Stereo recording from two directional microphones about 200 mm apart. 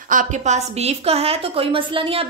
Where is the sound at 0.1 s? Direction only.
40° right (ahead or behind).